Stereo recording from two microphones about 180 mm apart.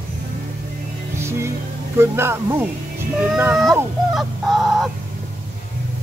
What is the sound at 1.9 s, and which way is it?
Speech, 15° right (ahead or behind).